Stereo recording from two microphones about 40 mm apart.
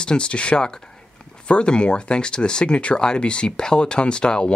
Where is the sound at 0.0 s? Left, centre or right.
Left.